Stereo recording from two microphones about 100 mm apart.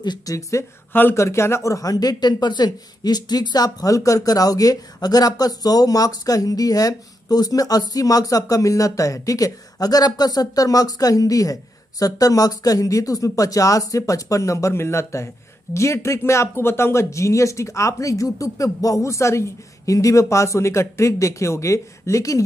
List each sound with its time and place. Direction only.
0.0 s speech: 40° left (ahead or behind)